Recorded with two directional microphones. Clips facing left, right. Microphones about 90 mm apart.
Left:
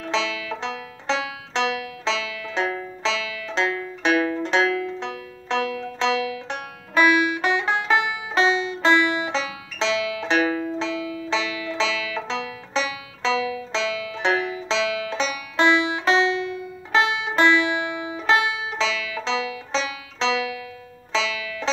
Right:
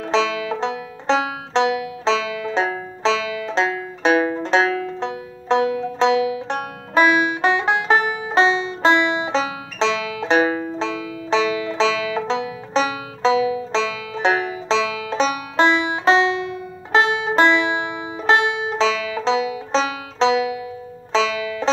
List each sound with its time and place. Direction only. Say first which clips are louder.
0.0 s banjo: right 6 dB; 45° right (ahead or behind)
6.9 s banjo: right 2 dB; 30° right (ahead or behind)
10.8 s banjo: right 2 dB; 45° right (ahead or behind)
21.1 s music: right 6 dB; 45° right (ahead or behind)